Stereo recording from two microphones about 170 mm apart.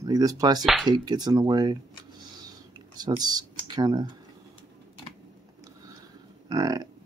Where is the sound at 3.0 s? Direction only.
25° right (ahead or behind).